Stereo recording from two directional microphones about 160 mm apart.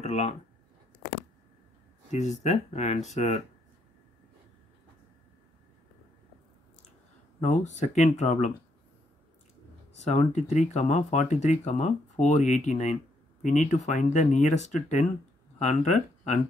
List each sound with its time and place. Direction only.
0.0 s speech: 40° left (ahead or behind)
2.0 s speech: 45° left (ahead or behind)
7.3 s speech: 45° left (ahead or behind)
9.9 s speech: 45° left (ahead or behind)